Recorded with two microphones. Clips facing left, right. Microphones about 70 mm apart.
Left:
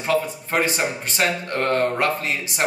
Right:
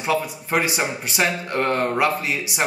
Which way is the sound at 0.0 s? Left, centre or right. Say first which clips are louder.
Left 1 dB; centre.